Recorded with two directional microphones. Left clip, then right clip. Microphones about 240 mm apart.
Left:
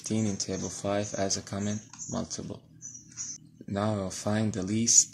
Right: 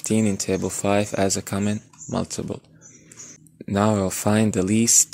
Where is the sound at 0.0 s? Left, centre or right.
Right.